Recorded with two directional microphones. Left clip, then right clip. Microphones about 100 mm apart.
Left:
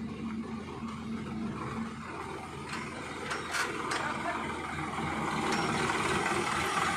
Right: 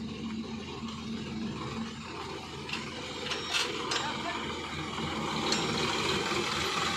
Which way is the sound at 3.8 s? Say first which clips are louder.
Even; 30° left (ahead or behind).